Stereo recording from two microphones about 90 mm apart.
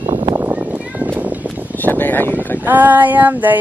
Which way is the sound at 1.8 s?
20° left (ahead or behind).